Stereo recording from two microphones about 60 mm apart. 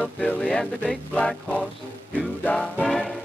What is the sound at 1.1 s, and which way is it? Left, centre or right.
Music, centre.